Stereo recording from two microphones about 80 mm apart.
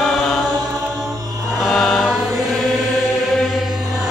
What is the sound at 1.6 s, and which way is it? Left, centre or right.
Chant, centre.